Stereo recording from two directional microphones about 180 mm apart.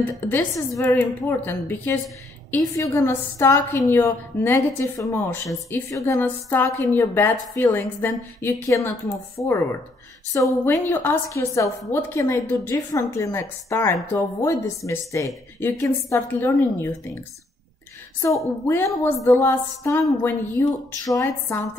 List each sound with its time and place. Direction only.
0.0 s a woman's voice: 10° left (ahead or behind)
18.2 s a woman's voice: 15° left (ahead or behind)